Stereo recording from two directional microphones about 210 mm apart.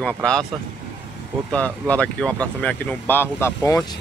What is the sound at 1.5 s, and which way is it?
Speech, 5° left (ahead or behind).